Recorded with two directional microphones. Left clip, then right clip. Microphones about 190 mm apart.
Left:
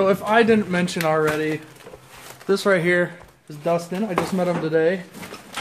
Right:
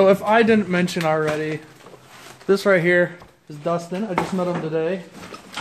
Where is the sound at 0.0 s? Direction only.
35° right (ahead or behind).